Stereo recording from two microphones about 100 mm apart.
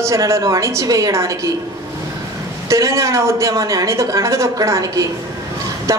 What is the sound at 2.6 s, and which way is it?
Speech, 30° right (ahead or behind).